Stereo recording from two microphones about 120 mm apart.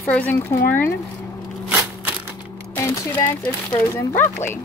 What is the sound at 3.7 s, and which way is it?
Speech, 20° left (ahead or behind).